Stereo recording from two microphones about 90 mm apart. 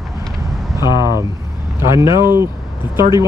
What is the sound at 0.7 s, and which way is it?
Speech, 55° left (ahead or behind).